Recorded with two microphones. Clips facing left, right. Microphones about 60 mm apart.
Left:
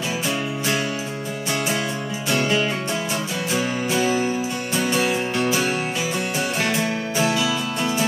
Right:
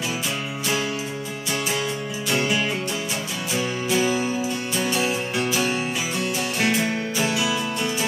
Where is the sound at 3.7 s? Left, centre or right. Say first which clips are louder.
Right 1 dB; left.